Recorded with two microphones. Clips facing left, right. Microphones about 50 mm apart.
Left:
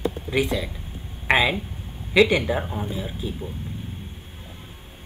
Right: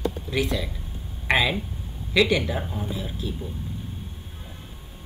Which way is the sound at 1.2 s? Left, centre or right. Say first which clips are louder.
Left 2 dB; centre.